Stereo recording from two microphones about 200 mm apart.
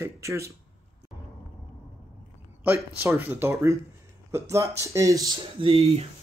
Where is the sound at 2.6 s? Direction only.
10° right (ahead or behind).